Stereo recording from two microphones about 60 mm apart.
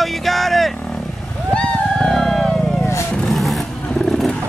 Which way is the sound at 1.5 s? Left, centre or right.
Centre.